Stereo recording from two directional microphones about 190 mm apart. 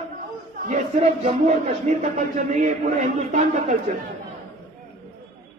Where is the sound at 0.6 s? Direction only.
35° right (ahead or behind).